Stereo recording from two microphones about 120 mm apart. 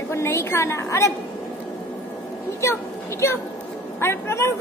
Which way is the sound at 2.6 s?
20° left (ahead or behind).